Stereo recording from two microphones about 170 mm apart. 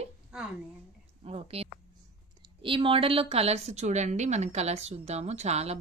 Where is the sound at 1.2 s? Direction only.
35° right (ahead or behind).